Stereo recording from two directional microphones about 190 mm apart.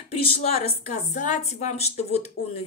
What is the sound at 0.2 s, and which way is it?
A woman's voice, 30° left (ahead or behind).